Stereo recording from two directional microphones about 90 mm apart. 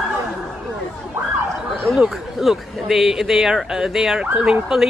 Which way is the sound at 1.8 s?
Centre (ahead or behind).